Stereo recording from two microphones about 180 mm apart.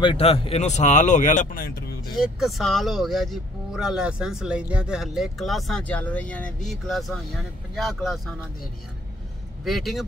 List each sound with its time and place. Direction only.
0.0 s speech: 30° left (ahead or behind); by 2.1 s 60° left (ahead or behind)
2.1 s speech: centre (ahead or behind)
9.7 s speech: centre (ahead or behind)